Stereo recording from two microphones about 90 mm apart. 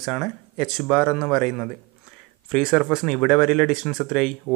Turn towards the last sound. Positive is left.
turn(degrees=-10)  # may be behind; listen again after turning